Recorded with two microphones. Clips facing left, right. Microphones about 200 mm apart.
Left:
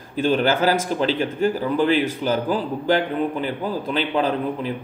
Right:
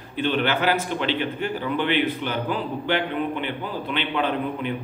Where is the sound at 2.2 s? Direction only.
35° left (ahead or behind).